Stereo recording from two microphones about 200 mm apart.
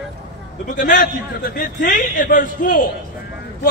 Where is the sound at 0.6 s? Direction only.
40° left (ahead or behind).